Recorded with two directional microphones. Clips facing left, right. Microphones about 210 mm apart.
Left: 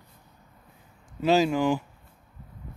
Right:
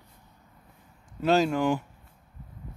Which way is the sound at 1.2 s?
Centre (ahead or behind).